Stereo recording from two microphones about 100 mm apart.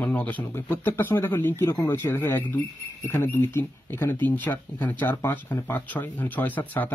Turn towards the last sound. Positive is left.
turn(degrees=15)  # may be behind; listen again after turning